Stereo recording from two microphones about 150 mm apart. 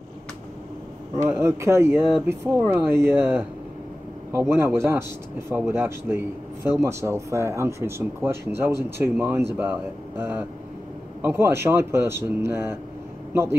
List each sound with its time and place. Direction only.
1.1 s a man's voice: 15° right (ahead or behind)